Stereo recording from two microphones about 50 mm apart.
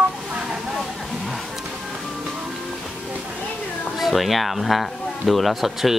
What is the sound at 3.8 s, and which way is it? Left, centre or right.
Speech, centre.